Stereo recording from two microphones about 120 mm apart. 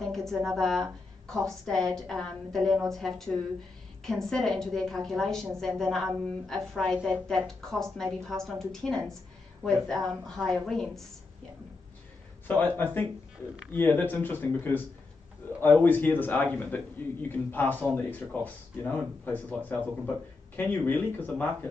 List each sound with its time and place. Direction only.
0.0 s a woman's voice: 5° left (ahead or behind)
12.4 s speech: 15° left (ahead or behind)